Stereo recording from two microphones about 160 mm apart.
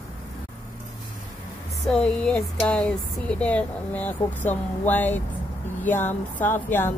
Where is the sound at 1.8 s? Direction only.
5° left (ahead or behind).